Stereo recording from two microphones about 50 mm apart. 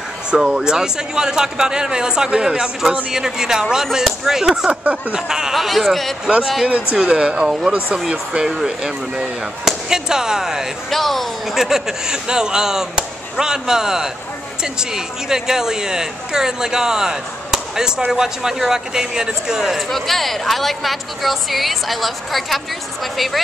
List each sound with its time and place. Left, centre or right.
0.3 s speech: centre
4.6 s a sound: right
5.1 s a woman's voice: centre
7.1 s speech: centre
10.9 s speech: centre
19.9 s a woman's voice: centre